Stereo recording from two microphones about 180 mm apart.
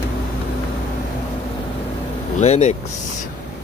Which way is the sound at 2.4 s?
40° left (ahead or behind).